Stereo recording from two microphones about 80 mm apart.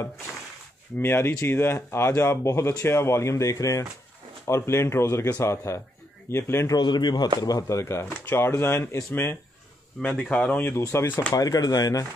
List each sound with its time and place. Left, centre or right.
0.9 s speech: left
6.7 s a man's voice: left
7.3 s speech: left
10.0 s speech: centre
10.8 s speech: left
11.3 s speech: left